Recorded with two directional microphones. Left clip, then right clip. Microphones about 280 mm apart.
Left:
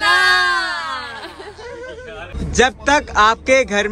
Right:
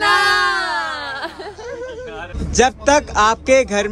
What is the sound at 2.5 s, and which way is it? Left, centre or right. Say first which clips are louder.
Speech: right 1 dB; centre.